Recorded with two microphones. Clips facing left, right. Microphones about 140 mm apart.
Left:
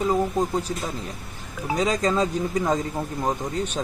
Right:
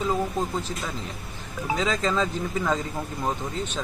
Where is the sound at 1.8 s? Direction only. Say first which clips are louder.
Left 4 dB; 45° left (ahead or behind).